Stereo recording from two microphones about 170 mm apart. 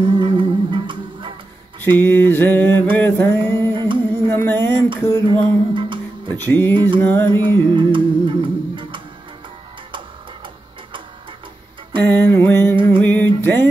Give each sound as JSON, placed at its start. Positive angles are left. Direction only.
{"t": 0.0, "sound": "music", "side_deg": -30}
{"t": 1.8, "sound": "mantra", "side_deg": 10}
{"t": 3.7, "sound": "music", "side_deg": -30}
{"t": 4.3, "sound": "mantra", "side_deg": 10}
{"t": 4.7, "sound": "a sound", "side_deg": -30}
{"t": 5.3, "sound": "music", "side_deg": -30}
{"t": 6.3, "sound": "mantra", "side_deg": 10}
{"t": 6.7, "sound": "a sound", "side_deg": -30}
{"t": 7.0, "sound": "mantra", "side_deg": 10}
{"t": 7.4, "sound": "music", "side_deg": -30}
{"t": 12.0, "sound": "mantra", "side_deg": 10}